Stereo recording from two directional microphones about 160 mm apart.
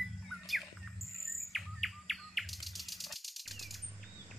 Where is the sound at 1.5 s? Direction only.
Centre (ahead or behind).